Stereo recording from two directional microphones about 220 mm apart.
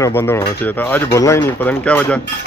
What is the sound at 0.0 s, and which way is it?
Speech, 10° left (ahead or behind).